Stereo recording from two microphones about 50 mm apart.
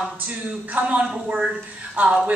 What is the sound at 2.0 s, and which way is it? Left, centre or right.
Speech, right.